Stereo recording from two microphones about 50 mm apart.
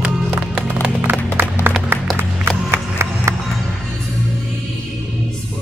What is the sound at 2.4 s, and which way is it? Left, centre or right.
Music, right.